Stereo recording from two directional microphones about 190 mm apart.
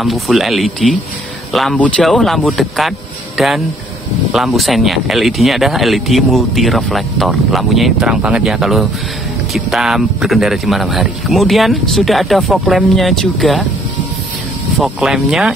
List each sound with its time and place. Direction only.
0.0 s speech: centre (ahead or behind)
14.8 s speech: centre (ahead or behind)